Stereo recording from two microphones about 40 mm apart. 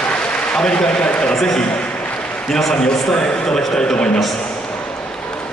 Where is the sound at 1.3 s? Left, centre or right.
Centre.